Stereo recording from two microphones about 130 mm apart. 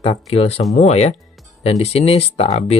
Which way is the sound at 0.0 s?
50° left (ahead or behind).